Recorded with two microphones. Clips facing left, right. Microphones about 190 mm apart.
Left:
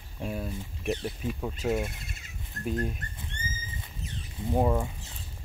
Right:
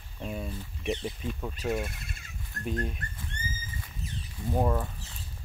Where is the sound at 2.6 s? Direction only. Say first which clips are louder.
Left 2 dB; centre (ahead or behind).